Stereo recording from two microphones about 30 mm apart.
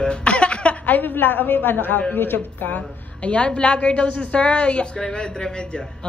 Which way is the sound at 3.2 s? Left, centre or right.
Left.